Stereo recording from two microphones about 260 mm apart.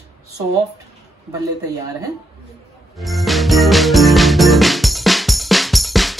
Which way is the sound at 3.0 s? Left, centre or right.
Centre.